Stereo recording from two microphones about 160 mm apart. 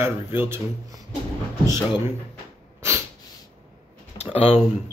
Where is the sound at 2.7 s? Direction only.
15° right (ahead or behind).